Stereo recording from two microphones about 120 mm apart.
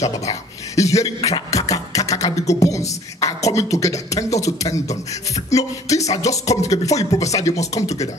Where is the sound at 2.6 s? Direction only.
25° left (ahead or behind).